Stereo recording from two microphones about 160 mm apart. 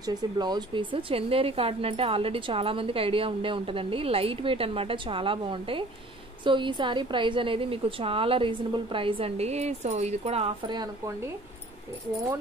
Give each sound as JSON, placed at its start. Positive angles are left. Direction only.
{"t": 0.0, "sound": "a woman's voice", "side_deg": -25}